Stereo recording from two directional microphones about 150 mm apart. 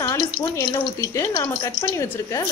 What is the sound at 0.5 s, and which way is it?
Speech, 20° left (ahead or behind).